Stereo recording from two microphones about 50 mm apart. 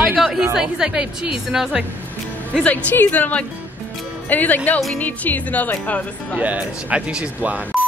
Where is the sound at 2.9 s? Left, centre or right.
Left.